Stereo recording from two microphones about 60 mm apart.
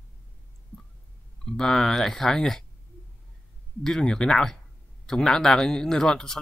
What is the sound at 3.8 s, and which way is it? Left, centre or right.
Speech, centre.